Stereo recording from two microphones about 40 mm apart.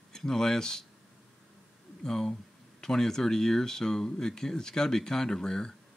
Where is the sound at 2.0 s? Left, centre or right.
Centre.